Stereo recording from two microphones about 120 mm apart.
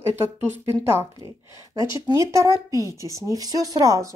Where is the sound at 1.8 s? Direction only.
25° right (ahead or behind).